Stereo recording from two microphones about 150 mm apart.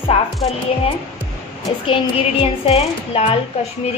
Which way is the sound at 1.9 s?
40° left (ahead or behind).